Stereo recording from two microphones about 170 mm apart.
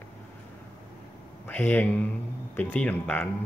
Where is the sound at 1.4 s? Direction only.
10° left (ahead or behind).